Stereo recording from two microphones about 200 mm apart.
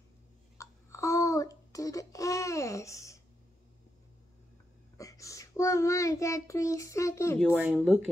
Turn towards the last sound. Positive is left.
turn(degrees=-5)  # may be behind; listen again after turning